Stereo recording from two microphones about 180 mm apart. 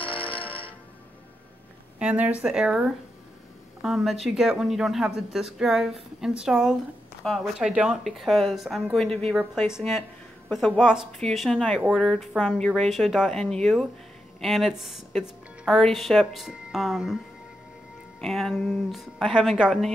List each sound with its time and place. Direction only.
0.0 s music: 30° left (ahead or behind)
2.0 s speech: 5° right (ahead or behind)
18.2 s speech: centre (ahead or behind)